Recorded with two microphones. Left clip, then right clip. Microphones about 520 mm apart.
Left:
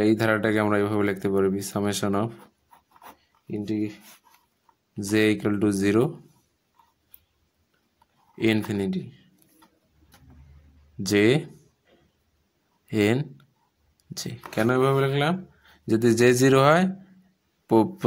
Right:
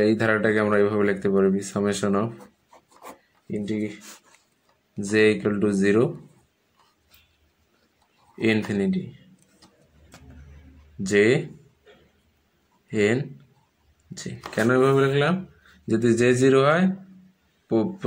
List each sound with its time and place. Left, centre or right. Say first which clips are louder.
0.0 s speech: right 1 dB; left
3.6 s speech: left 1 dB; left
5.1 s speech: right 3 dB; left
8.4 s speech: right 1 dB; left
11.1 s speech: right 1 dB; left
12.9 s speech: right 1 dB; left